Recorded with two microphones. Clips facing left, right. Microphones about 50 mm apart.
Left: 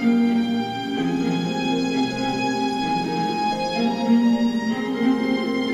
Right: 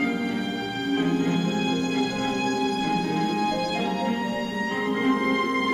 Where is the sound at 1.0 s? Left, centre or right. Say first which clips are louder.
Left 3 dB; right.